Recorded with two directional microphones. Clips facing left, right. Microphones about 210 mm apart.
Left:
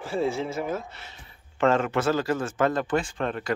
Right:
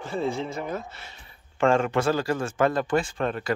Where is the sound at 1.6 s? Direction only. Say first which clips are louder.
Right 1 dB; 30° right (ahead or behind).